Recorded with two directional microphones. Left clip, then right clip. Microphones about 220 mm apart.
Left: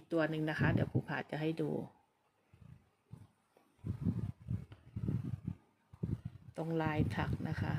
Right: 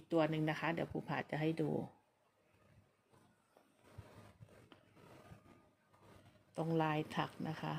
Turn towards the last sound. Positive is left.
turn(degrees=0)  # may be behind; listen again after turning